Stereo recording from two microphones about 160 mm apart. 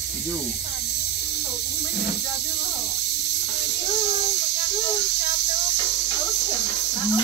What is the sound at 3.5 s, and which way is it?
Music, 90° left.